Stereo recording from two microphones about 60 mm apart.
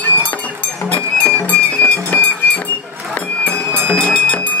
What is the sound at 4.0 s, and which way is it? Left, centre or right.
Music, centre.